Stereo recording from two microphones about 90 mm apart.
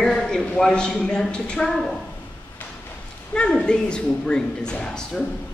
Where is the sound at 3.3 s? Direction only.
10° left (ahead or behind).